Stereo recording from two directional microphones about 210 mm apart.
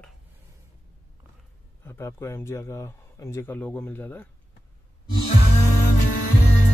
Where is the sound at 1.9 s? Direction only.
10° left (ahead or behind).